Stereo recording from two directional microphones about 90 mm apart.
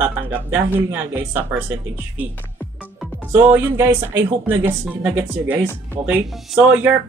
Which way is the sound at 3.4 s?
20° right (ahead or behind).